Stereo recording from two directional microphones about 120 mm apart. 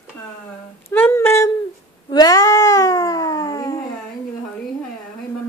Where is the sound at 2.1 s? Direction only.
30° left (ahead or behind).